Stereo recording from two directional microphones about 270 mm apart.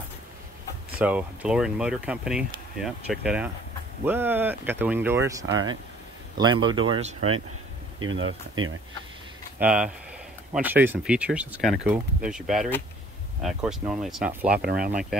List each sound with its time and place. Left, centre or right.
0.9 s speech: centre; by 7.2 s right
7.2 s speech: right
9.6 s speech: centre
14.6 s speech: right